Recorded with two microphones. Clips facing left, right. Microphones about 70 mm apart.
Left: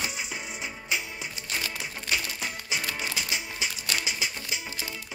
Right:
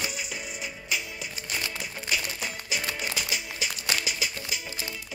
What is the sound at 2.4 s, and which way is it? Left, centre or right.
Music, left.